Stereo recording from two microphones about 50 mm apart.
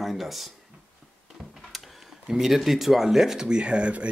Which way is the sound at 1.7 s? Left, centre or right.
Centre.